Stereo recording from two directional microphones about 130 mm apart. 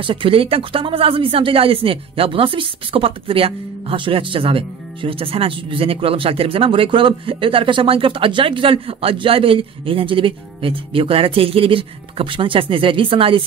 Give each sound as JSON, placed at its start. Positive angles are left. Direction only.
{"t": 0.0, "sound": "speech", "side_deg": -40}